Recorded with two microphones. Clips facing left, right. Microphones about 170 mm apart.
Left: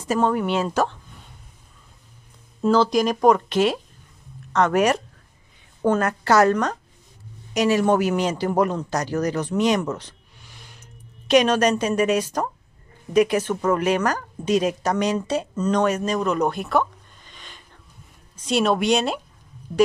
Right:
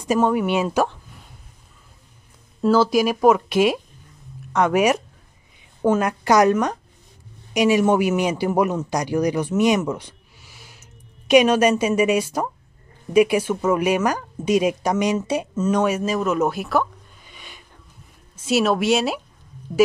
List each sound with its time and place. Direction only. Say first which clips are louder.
0.0 s speech: right 2 dB; 10° right (ahead or behind)
2.6 s a man's voice: right 1 dB; 5° right (ahead or behind)